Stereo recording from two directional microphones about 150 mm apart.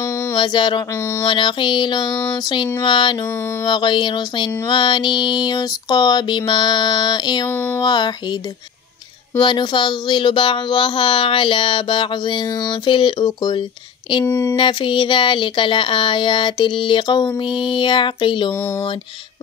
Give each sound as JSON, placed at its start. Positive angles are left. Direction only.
{"t": 0.3, "sound": "speech", "side_deg": 30}
{"t": 7.5, "sound": "speech", "side_deg": 15}
{"t": 7.8, "sound": "speech", "side_deg": 30}
{"t": 9.4, "sound": "speech", "side_deg": 30}
{"t": 14.2, "sound": "speech", "side_deg": 15}
{"t": 14.5, "sound": "speech", "side_deg": 30}
{"t": 18.5, "sound": "speech", "side_deg": 15}